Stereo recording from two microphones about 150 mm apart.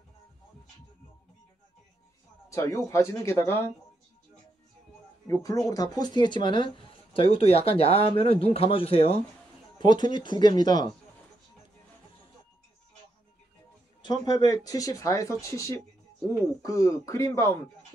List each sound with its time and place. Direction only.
2.5 s speech: 20° left (ahead or behind)
5.2 s speech: 20° left (ahead or behind)
14.2 s speech: 25° left (ahead or behind)